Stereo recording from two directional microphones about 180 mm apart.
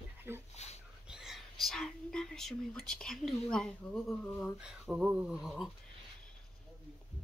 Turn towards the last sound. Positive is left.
turn(degrees=0)  # may be behind; listen again after turning